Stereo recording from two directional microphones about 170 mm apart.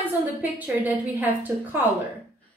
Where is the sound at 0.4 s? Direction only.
10° right (ahead or behind).